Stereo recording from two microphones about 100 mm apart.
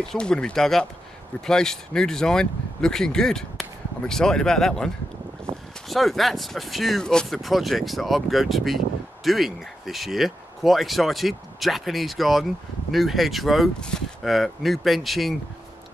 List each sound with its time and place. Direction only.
0.1 s speech: 5° left (ahead or behind)
5.5 s boat: 75° right (ahead or behind)
5.9 s speech: centre (ahead or behind)